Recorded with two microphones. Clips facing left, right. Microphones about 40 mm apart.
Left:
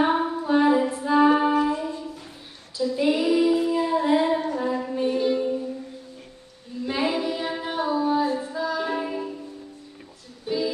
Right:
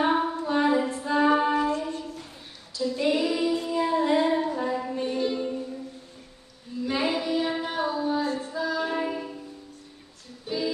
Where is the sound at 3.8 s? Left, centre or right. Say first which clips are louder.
Left 2 dB; centre.